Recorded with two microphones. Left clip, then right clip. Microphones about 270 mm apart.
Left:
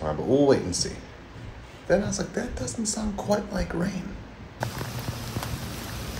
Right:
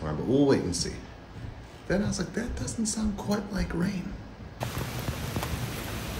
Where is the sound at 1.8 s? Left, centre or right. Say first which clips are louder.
Left 6 dB; centre.